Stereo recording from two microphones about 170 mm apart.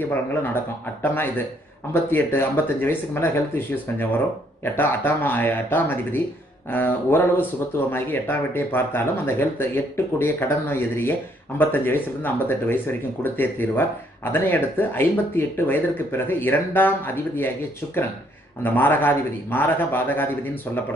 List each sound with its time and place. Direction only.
0.0 s speech: 10° left (ahead or behind)
18.6 s speech: 10° left (ahead or behind)